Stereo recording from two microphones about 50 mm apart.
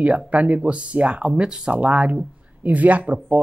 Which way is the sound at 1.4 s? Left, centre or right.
Centre.